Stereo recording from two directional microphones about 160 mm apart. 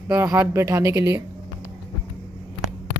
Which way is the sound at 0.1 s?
15° right (ahead or behind).